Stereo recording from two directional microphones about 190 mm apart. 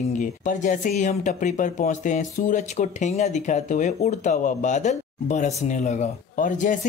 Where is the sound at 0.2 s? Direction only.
40° left (ahead or behind).